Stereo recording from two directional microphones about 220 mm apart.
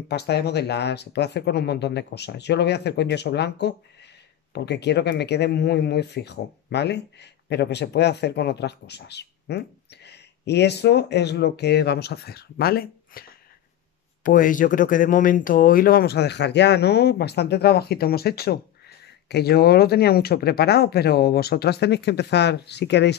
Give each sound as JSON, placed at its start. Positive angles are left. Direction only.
{"t": 0.1, "sound": "speech", "side_deg": 50}